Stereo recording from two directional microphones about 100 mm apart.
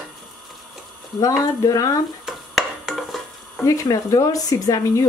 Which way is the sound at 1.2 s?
35° left (ahead or behind).